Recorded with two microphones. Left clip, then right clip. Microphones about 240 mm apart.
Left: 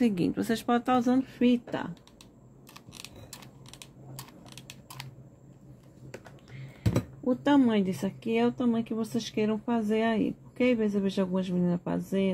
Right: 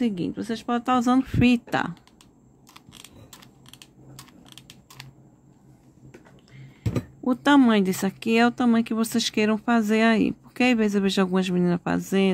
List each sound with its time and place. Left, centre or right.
0.0 s speech: centre
0.9 s speech: right
4.2 s typing: centre
7.2 s speech: right